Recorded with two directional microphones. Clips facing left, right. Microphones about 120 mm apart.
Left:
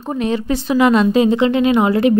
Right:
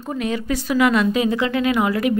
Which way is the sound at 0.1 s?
30° left (ahead or behind).